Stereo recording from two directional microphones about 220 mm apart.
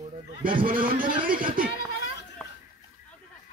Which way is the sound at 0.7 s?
40° right (ahead or behind).